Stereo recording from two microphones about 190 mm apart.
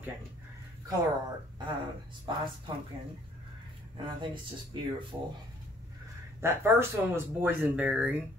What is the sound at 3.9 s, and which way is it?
Speech, 25° right (ahead or behind).